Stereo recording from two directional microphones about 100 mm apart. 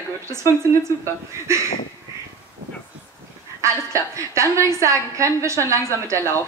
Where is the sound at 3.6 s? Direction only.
30° right (ahead or behind).